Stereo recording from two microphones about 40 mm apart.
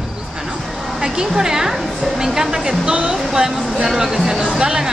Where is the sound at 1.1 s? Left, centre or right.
Centre.